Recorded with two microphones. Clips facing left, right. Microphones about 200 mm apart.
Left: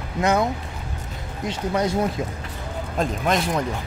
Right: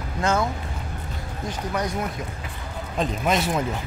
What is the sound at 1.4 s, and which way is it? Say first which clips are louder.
Speech: left 4 dB; 25° left (ahead or behind).